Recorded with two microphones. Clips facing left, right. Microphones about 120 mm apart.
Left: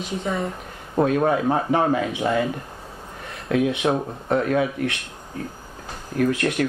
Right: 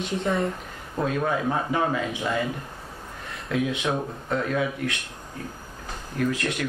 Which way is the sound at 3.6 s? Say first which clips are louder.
Left 5 dB; 50° left (ahead or behind).